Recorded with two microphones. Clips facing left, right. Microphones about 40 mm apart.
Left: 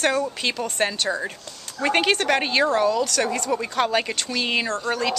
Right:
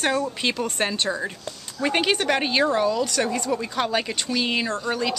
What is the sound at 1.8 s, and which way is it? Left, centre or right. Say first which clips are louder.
Speech: left 2 dB; centre.